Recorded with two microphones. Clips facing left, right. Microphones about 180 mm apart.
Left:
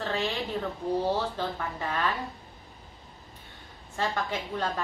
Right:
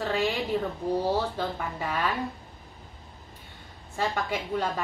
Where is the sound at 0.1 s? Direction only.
15° right (ahead or behind).